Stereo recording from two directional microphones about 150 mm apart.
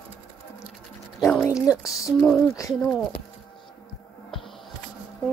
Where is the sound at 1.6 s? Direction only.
20° left (ahead or behind).